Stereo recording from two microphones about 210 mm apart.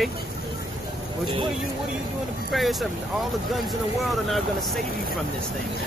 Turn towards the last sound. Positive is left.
turn(degrees=0)  # may be behind; listen again after turning